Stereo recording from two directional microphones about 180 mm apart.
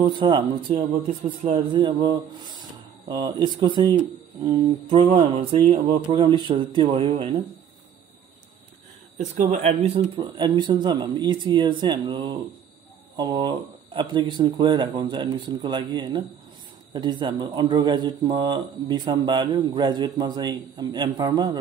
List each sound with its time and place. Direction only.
0.0 s a man's voice: 25° right (ahead or behind)
9.4 s a man's voice: 35° right (ahead or behind)